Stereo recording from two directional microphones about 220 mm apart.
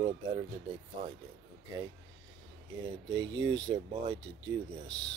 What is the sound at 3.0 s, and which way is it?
Speech, 20° right (ahead or behind).